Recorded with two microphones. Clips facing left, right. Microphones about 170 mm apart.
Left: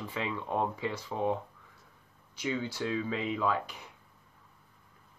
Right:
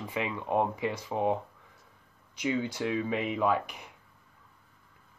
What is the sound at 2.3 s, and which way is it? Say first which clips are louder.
Speech: right 3 dB; 15° right (ahead or behind).